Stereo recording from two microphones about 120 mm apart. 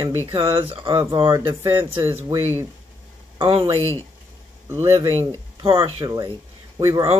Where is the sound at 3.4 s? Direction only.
45° right (ahead or behind).